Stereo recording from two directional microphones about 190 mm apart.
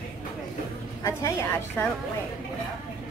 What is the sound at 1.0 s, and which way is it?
Speech, 15° left (ahead or behind).